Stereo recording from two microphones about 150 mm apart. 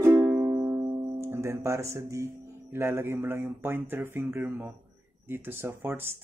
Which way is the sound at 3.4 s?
15° right (ahead or behind).